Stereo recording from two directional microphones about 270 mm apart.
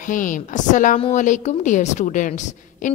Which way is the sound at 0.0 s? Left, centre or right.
Left.